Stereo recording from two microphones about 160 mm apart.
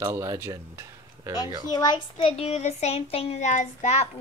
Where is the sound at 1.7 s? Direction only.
25° left (ahead or behind).